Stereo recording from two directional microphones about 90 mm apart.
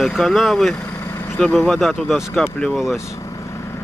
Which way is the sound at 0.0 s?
Centre (ahead or behind).